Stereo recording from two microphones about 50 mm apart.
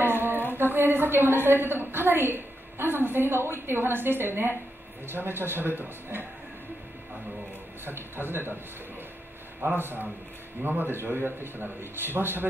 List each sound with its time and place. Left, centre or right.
0.0 s humming: right
0.7 s a woman's voice: right
7.8 s a woman's voice: right
10.6 s a woman's voice: right